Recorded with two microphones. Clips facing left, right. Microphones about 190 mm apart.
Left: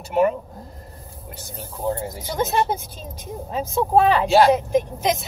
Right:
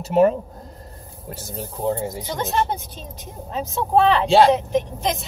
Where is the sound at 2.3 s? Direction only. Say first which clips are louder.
Left 3 dB; centre (ahead or behind).